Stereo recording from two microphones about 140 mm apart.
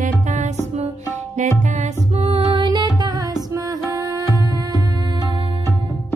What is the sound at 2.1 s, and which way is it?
Music, 45° right (ahead or behind).